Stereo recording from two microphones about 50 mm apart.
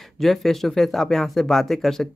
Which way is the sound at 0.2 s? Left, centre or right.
Centre.